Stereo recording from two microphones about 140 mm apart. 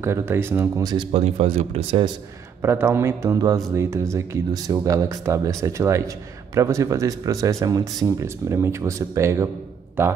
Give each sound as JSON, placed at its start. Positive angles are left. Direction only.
{"t": 0.0, "sound": "speech", "side_deg": -15}
{"t": 1.1, "sound": "speech", "side_deg": -45}
{"t": 2.6, "sound": "a man's voice", "side_deg": -15}